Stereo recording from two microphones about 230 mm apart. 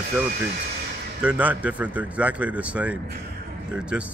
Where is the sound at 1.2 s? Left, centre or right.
Centre.